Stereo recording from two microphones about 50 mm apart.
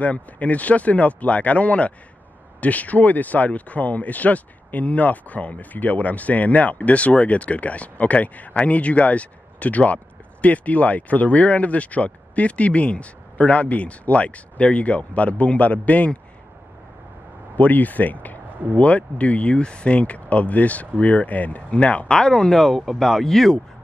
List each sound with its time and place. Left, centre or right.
0.0 s speech: left
17.6 s speech: left; by 23.6 s centre